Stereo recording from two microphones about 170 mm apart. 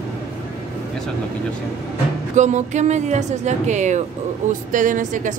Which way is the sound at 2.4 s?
45° right (ahead or behind).